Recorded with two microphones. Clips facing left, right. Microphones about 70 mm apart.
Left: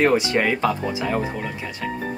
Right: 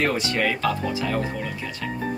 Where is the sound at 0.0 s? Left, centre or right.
Left.